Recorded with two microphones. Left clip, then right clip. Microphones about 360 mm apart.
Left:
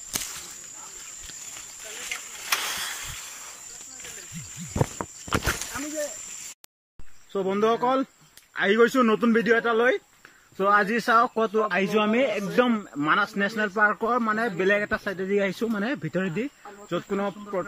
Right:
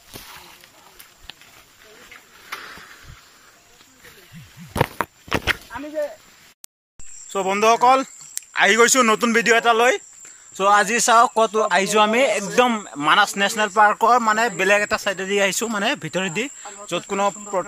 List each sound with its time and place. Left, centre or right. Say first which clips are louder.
4.7 s walk: right 8 dB; right
7.3 s a man's voice: right 7 dB; centre
16.3 s cricket: right 5 dB; right
16.9 s speech: right 6 dB; centre